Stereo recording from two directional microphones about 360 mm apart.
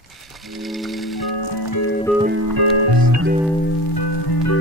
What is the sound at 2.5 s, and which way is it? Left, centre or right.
Music, right.